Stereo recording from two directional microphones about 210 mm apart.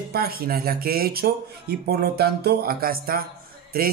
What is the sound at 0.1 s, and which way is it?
Speech, 45° right (ahead or behind).